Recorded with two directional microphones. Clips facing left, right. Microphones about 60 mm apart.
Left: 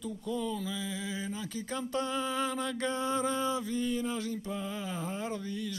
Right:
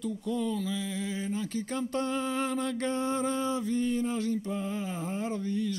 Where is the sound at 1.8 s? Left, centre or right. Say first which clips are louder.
Right 1 dB; right.